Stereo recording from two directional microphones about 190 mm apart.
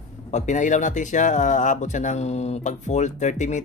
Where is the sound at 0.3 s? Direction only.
40° left (ahead or behind).